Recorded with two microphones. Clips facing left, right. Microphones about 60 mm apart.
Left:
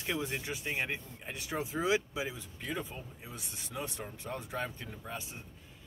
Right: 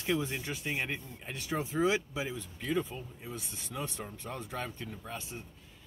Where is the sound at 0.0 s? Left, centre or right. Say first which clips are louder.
Right 3 dB; centre.